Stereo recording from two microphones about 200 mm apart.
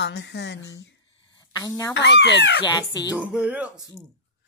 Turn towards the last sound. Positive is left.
turn(degrees=-5)  # may be behind; listen again after turning